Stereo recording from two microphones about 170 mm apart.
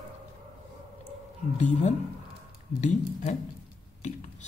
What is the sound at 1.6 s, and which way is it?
Speech, 45° left (ahead or behind).